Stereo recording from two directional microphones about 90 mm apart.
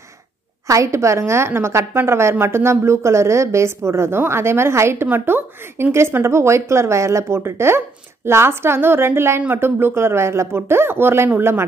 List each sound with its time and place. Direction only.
0.7 s a woman's voice: 35° right (ahead or behind)